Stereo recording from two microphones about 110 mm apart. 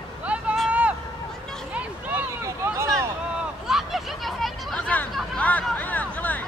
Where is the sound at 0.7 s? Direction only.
10° right (ahead or behind).